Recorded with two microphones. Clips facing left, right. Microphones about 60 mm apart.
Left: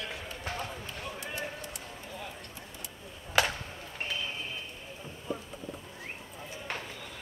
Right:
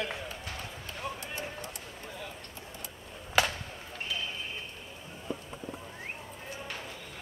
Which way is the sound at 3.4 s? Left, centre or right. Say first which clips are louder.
Even; centre.